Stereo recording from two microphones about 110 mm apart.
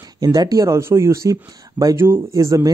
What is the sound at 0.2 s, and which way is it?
Speech, 35° right (ahead or behind).